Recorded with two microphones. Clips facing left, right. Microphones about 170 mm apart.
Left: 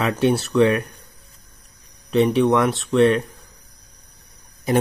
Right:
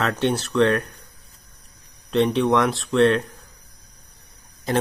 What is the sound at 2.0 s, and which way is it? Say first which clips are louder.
Speech: left 2 dB; 5° left (ahead or behind).